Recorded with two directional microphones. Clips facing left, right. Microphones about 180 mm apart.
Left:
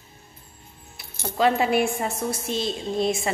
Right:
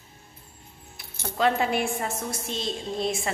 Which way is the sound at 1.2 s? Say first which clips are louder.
Left 3 dB; 10° left (ahead or behind).